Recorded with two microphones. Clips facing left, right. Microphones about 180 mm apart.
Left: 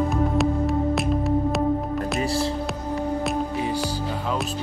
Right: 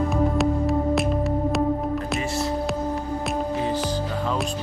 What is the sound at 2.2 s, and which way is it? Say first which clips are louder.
Music: left 2 dB; 30° left (ahead or behind).